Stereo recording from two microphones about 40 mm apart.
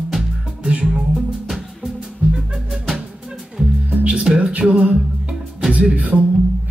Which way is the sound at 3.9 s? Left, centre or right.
Right.